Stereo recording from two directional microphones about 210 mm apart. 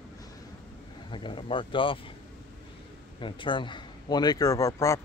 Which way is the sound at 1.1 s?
25° left (ahead or behind).